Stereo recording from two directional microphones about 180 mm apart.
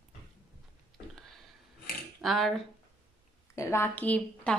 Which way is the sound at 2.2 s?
Centre (ahead or behind).